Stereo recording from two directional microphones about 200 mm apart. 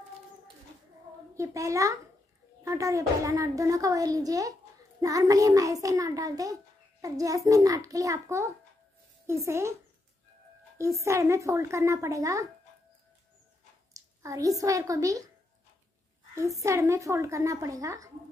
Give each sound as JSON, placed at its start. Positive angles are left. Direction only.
{"t": 1.3, "sound": "a child's voice", "side_deg": -15}
{"t": 10.8, "sound": "a child's voice", "side_deg": -15}
{"t": 13.9, "sound": "a woman's voice", "side_deg": -15}
{"t": 16.6, "sound": "a child's voice", "side_deg": -15}